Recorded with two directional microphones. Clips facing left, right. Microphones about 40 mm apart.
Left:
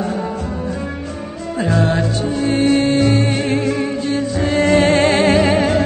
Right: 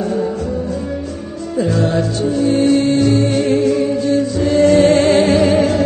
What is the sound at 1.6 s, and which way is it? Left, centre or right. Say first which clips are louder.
Music: right 1 dB; left.